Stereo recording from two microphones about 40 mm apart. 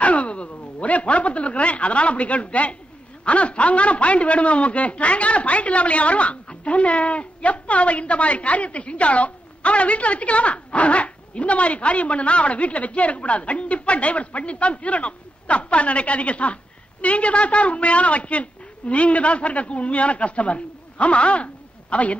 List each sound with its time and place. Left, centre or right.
0.0 s a woman's voice: left